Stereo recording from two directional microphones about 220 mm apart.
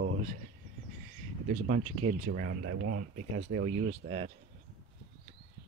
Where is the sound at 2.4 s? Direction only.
50° right (ahead or behind).